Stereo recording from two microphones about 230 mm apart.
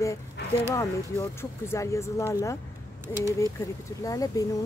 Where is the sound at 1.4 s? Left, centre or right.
Centre.